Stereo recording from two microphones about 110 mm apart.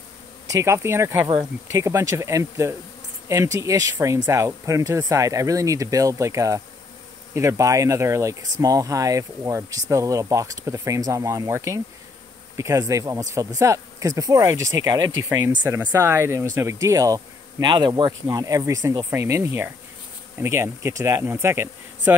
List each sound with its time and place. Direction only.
0.5 s speech: 25° right (ahead or behind)
18.2 s speech: 30° right (ahead or behind)